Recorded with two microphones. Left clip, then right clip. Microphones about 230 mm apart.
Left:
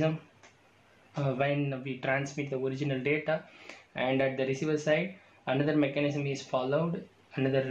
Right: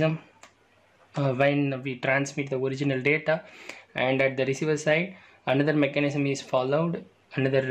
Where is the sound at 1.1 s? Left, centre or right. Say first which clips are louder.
Right 6 dB; right.